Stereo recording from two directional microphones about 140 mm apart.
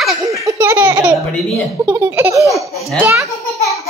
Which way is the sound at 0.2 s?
20° right (ahead or behind).